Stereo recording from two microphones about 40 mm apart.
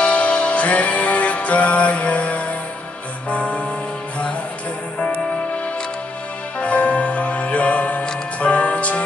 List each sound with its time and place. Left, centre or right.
0.0 s music: left
6.6 s music: left